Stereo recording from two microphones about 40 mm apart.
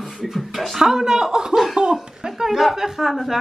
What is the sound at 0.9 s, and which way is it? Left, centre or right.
A woman's voice, centre.